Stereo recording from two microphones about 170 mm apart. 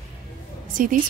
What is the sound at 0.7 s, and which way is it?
Speech, 50° right (ahead or behind).